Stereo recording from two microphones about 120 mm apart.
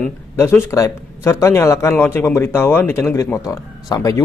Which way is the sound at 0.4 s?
20° left (ahead or behind).